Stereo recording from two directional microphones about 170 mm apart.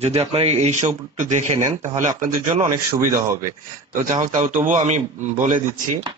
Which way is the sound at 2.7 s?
20° right (ahead or behind).